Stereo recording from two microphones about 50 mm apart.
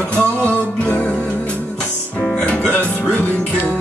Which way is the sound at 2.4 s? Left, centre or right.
Left.